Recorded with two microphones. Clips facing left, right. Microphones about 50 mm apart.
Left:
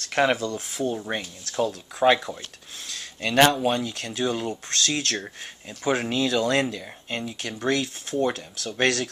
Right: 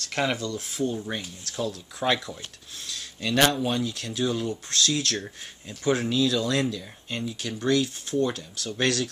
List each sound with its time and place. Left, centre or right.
0.0 s speech: left
1.4 s speech: left
2.0 s speech: left
2.9 s a sound: left
3.3 s speech: left
7.7 s speech: left